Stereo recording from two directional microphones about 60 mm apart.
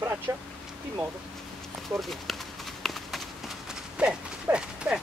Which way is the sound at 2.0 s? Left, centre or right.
Centre.